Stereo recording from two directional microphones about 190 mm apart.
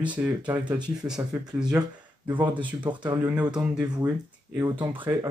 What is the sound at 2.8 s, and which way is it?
Speech, 25° right (ahead or behind).